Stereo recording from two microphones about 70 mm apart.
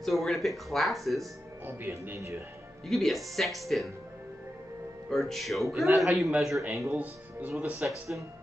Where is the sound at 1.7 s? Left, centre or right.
Right.